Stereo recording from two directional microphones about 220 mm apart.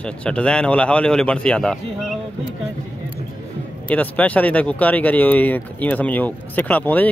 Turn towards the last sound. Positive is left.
turn(degrees=10)  # may be behind; listen again after turning